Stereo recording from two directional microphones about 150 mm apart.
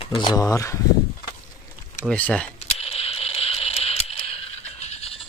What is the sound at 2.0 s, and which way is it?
Speech, 10° left (ahead or behind).